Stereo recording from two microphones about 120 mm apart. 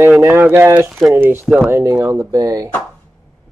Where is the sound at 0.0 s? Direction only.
20° right (ahead or behind).